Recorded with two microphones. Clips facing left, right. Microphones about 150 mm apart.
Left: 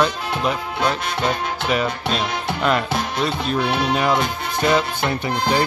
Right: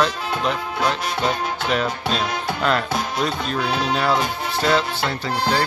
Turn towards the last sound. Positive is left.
turn(degrees=15)  # may be behind; listen again after turning